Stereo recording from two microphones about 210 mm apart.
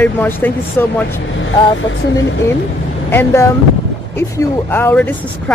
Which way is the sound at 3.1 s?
10° left (ahead or behind).